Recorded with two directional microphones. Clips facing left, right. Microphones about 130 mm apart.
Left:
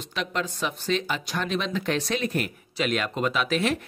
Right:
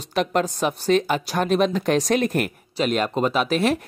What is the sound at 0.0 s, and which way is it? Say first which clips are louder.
Speech: right 8 dB; 45° right (ahead or behind).